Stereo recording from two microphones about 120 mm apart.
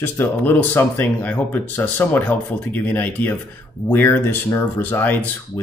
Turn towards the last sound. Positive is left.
turn(degrees=15)  # may be behind; listen again after turning